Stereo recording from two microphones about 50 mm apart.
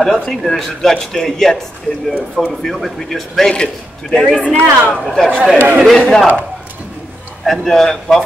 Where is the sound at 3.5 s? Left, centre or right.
Centre.